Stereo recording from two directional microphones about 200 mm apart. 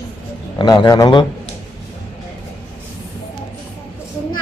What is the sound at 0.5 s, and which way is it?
Speech, 20° left (ahead or behind).